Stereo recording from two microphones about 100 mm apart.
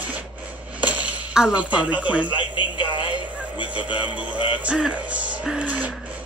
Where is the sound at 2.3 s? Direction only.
55° left (ahead or behind).